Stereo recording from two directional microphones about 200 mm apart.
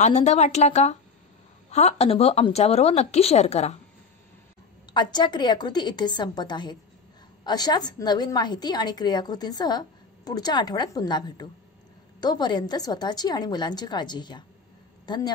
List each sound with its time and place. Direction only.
0.0 s a woman's voice: 35° left (ahead or behind)
4.9 s a woman's voice: 20° left (ahead or behind)